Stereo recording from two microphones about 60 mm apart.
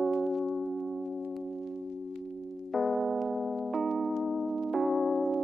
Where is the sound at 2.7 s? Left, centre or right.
Centre.